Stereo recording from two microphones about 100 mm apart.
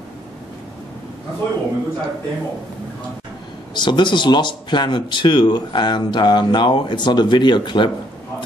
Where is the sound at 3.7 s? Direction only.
50° left (ahead or behind).